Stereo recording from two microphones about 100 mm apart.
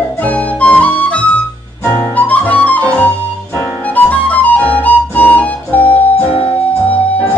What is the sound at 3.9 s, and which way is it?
Flute, 15° left (ahead or behind).